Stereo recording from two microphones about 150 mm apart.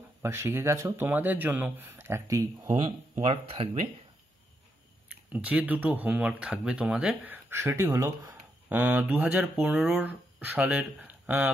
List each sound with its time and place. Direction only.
0.2 s speech: 15° right (ahead or behind)
3.2 s speech: 40° right (ahead or behind)
5.3 s speech: 10° right (ahead or behind)